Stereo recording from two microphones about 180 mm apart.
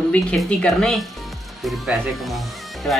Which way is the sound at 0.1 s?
5° left (ahead or behind).